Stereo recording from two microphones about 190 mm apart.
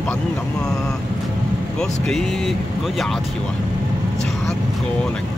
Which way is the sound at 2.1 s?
Centre (ahead or behind).